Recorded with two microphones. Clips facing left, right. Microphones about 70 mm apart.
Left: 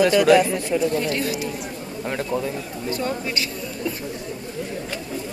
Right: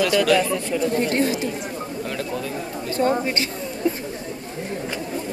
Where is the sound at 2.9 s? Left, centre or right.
Right.